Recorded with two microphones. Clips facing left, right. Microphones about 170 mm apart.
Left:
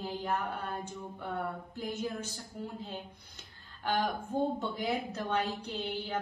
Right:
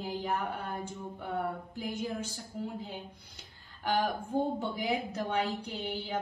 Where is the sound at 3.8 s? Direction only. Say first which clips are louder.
Right 1 dB; 10° right (ahead or behind).